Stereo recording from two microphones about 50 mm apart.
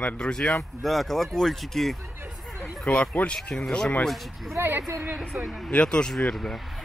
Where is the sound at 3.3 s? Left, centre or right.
Centre.